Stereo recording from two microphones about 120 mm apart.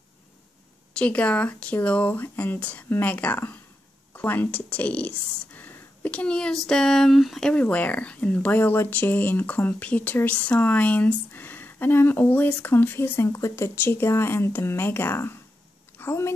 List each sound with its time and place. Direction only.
0.9 s speech: 10° left (ahead or behind)